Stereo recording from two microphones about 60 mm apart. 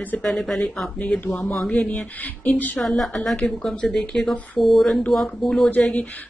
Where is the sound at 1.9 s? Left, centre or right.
Left.